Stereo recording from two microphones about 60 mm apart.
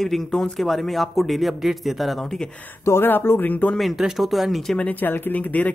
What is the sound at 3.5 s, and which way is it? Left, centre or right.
Speech, left.